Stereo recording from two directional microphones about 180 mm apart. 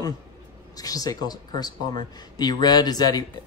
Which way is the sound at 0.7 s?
20° left (ahead or behind).